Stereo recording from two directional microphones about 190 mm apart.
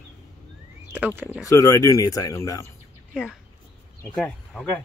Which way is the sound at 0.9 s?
10° right (ahead or behind).